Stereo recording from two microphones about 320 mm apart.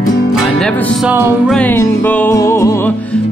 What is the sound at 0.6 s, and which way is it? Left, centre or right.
Music, centre.